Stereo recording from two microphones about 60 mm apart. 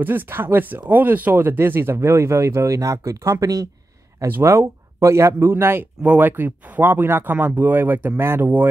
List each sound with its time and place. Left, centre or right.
0.0 s speech: right
4.4 s speech: right
8.2 s speech: right